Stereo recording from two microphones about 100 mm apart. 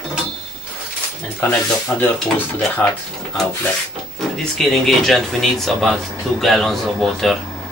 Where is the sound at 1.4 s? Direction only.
15° left (ahead or behind).